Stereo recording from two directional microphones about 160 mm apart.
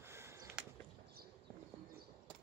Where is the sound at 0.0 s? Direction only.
15° right (ahead or behind).